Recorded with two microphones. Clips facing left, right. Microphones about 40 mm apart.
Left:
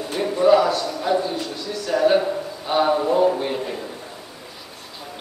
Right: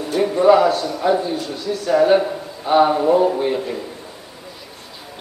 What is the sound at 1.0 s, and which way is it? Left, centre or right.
Speech, centre.